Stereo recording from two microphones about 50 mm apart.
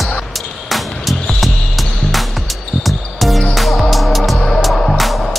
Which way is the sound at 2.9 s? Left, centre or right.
Centre.